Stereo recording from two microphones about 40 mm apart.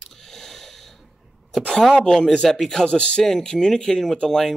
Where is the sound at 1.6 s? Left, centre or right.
Left.